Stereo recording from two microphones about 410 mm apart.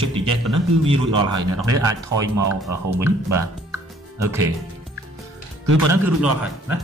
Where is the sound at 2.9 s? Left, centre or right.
Centre.